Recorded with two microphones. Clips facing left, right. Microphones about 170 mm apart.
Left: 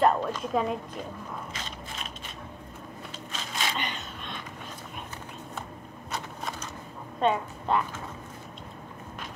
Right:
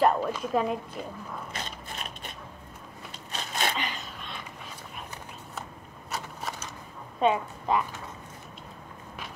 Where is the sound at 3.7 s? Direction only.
Centre (ahead or behind).